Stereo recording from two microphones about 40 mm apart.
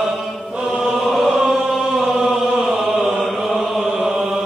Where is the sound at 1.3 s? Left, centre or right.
Centre.